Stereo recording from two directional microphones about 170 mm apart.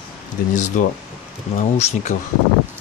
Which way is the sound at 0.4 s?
60° left (ahead or behind).